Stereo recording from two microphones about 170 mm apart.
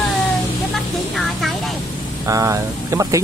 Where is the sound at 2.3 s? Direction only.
20° right (ahead or behind).